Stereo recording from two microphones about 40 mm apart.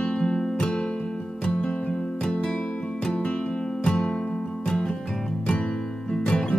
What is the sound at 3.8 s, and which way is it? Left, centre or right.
Music, left.